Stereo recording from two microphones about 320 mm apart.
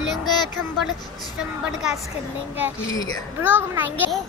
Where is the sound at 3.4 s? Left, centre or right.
Centre.